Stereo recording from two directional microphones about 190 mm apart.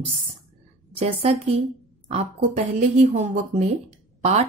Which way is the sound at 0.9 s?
30° right (ahead or behind).